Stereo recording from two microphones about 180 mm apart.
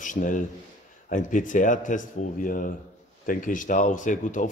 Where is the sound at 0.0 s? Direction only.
45° left (ahead or behind).